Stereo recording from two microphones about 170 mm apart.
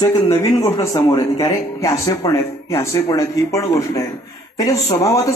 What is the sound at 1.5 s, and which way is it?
A man's voice, 15° left (ahead or behind).